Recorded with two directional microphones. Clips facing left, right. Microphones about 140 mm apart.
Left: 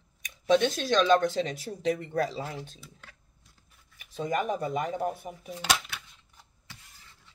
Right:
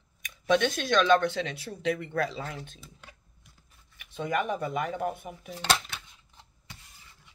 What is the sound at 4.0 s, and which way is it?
Speech, 35° left (ahead or behind).